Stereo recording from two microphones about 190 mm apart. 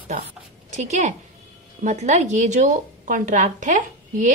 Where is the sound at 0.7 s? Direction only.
40° right (ahead or behind).